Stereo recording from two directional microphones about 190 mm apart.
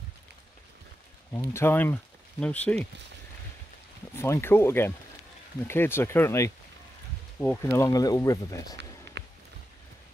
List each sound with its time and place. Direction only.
1.3 s speech: 15° left (ahead or behind)
4.2 s speech: 10° left (ahead or behind)
9.2 s walk: 65° right (ahead or behind)